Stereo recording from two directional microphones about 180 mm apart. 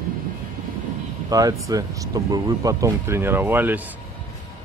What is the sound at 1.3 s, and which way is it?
Speech, 20° right (ahead or behind).